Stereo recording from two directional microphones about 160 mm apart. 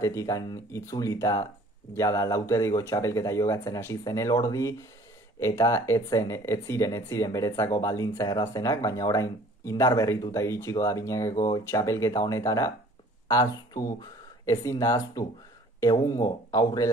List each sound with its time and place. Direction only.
0.0 s speech: 20° left (ahead or behind)